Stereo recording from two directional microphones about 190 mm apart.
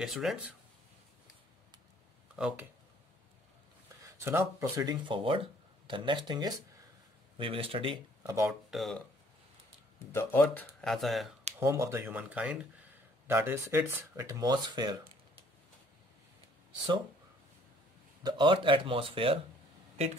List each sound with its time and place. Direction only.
0.0 s speech: centre (ahead or behind)
2.3 s speech: 5° right (ahead or behind)
4.0 s speech: 15° right (ahead or behind)
8.5 s speech: centre (ahead or behind)
10.1 s speech: 10° left (ahead or behind)
11.6 s speech: 15° right (ahead or behind)
18.2 s speech: 25° right (ahead or behind)